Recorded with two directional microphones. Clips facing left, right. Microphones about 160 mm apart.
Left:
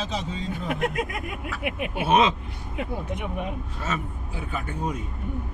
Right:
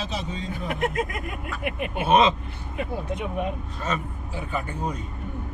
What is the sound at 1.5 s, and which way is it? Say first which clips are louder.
Speech: even; 5° left (ahead or behind).